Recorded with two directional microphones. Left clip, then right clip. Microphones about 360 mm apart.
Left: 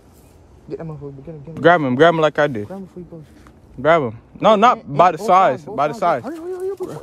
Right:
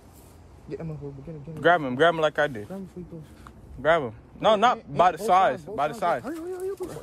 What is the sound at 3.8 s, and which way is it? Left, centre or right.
A man's voice, left.